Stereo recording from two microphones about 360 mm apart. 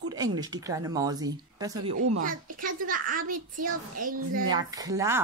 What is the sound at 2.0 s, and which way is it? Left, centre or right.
Speech, right.